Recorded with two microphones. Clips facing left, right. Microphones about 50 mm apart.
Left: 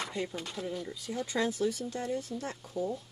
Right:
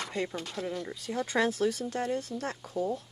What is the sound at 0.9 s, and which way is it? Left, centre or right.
Speech, right.